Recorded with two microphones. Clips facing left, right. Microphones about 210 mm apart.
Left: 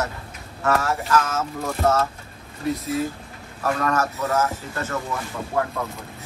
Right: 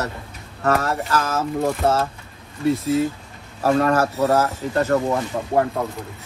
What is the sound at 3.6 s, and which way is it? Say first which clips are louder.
Speech: right 5 dB; 30° right (ahead or behind).